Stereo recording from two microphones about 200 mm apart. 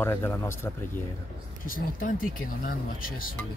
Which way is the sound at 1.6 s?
45° left (ahead or behind).